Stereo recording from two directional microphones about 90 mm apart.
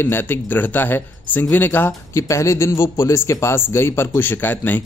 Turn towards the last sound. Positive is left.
turn(degrees=20)  # may be behind; listen again after turning